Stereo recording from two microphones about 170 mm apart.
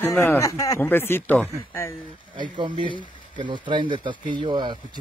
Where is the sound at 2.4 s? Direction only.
25° right (ahead or behind).